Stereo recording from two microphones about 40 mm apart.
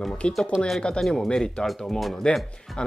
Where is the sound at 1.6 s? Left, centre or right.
Centre.